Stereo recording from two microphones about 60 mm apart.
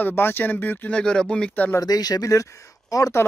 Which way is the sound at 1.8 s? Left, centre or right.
Left.